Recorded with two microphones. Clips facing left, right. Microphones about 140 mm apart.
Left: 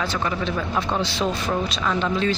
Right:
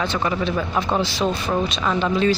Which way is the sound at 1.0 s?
Centre (ahead or behind).